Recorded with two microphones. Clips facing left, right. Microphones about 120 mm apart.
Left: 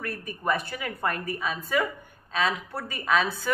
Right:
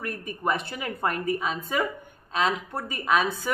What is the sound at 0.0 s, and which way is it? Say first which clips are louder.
A woman's voice: right 1 dB; 20° right (ahead or behind).